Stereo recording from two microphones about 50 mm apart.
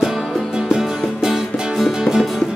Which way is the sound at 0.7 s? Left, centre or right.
Centre.